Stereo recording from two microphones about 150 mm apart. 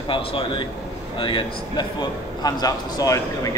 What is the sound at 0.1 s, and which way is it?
A man's voice, 35° left (ahead or behind).